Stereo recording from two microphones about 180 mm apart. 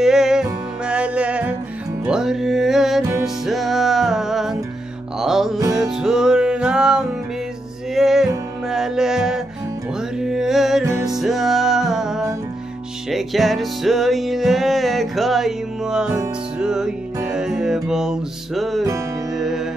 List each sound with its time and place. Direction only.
0.0 s music: 5° right (ahead or behind)
3.0 s music: 15° right (ahead or behind)
3.4 s music: centre (ahead or behind)
10.9 s music: 15° right (ahead or behind)
11.1 s music: centre (ahead or behind)